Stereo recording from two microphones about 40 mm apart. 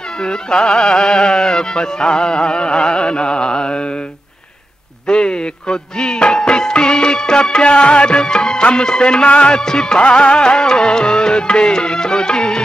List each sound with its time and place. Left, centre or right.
0.2 s music: centre
5.0 s music: left
9.6 s music: centre